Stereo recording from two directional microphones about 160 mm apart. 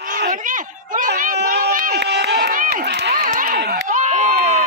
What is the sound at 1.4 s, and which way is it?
Run, 70° right (ahead or behind).